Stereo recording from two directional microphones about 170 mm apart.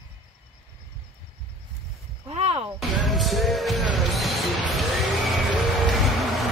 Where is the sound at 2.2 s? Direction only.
40° right (ahead or behind).